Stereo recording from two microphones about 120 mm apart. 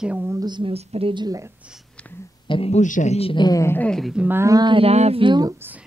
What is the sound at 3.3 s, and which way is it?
Speech, 40° left (ahead or behind).